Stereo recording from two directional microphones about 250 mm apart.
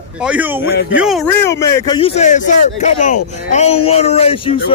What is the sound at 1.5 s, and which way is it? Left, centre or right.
Speech, centre.